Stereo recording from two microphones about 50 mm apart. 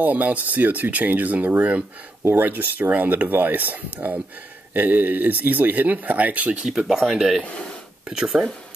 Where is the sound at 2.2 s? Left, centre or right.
Right.